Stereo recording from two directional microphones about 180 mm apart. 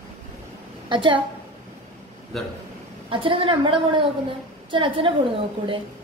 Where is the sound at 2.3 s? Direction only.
Centre (ahead or behind).